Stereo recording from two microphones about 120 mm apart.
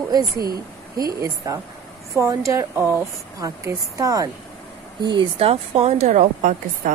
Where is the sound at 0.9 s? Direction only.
30° right (ahead or behind).